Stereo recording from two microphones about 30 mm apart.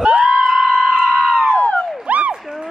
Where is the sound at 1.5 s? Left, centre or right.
Left.